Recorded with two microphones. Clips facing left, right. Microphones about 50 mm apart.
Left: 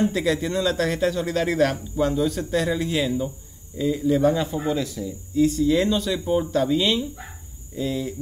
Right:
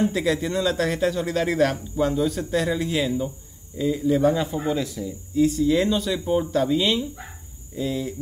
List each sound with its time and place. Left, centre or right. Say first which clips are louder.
0.0 s a man's voice: even; centre